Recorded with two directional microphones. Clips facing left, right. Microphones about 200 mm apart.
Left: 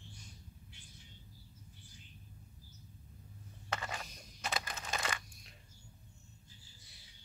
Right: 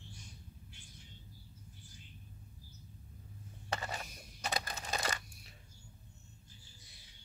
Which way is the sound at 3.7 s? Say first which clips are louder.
Right 1 dB; 35° right (ahead or behind).